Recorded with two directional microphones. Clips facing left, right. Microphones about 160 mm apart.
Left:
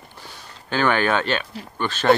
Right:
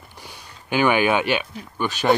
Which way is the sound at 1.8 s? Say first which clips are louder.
Right 1 dB; 15° right (ahead or behind).